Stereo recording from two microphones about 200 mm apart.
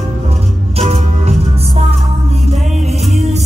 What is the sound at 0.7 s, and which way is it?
Music, 30° right (ahead or behind).